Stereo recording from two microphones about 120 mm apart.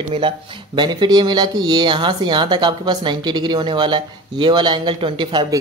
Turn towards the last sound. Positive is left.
turn(degrees=-40)  # may be behind; listen again after turning